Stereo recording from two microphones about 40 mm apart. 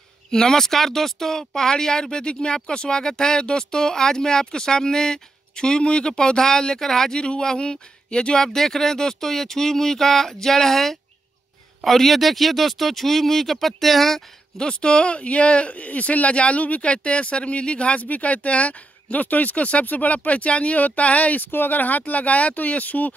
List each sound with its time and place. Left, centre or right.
0.3 s speech: centre
7.2 s speech: left
8.4 s speech: centre
14.6 s speech: left
21.5 s speech: left